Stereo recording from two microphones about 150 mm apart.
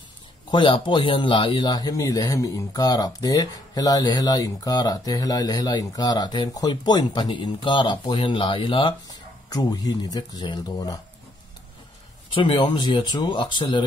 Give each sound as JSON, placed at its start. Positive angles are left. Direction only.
{"t": 0.5, "sound": "a man's voice", "side_deg": 30}
{"t": 12.4, "sound": "speech", "side_deg": 35}